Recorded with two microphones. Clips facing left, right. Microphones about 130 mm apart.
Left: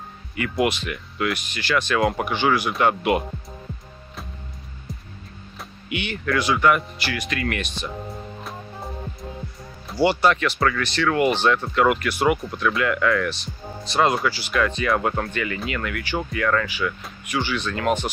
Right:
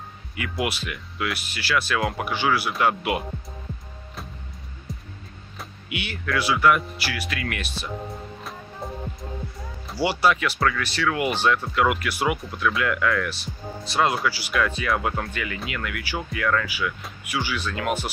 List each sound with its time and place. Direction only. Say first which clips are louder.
0.4 s speech: left 5 dB; 5° right (ahead or behind)
4.9 s music: even; centre (ahead or behind)
5.6 s speech: left 3 dB; 5° right (ahead or behind)
9.8 s speech: left 3 dB; 5° right (ahead or behind)